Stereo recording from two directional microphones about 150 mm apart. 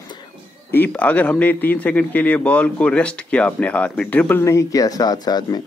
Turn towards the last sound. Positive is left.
turn(degrees=25)  # may be behind; listen again after turning